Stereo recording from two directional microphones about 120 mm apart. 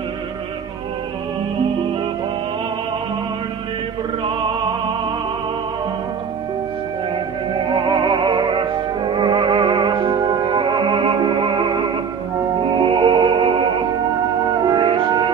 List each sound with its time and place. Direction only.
7.7 s music: 40° right (ahead or behind)
14.7 s music: 40° right (ahead or behind)